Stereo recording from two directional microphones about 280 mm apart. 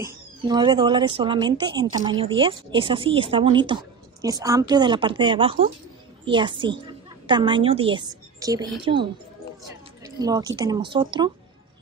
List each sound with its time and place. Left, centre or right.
0.0 s speech: centre